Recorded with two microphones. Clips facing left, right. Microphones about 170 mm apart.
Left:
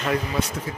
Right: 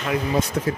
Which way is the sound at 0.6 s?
65° right (ahead or behind).